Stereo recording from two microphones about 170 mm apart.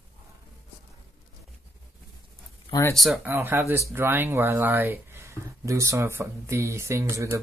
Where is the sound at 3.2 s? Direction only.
10° right (ahead or behind).